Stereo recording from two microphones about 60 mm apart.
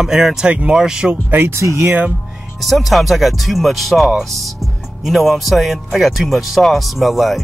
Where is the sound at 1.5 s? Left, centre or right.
Right.